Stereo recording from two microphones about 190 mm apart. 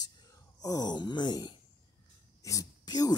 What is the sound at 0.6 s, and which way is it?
Speech, 20° left (ahead or behind).